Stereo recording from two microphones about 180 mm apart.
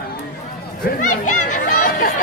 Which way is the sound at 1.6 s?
50° left (ahead or behind).